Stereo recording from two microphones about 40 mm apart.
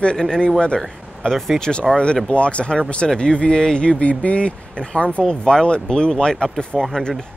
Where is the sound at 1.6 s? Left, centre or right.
Centre.